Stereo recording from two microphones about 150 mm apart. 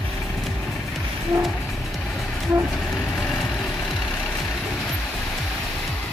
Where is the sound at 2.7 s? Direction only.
Centre (ahead or behind).